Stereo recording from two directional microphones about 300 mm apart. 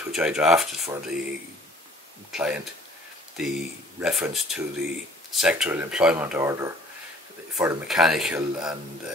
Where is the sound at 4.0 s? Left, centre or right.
Centre.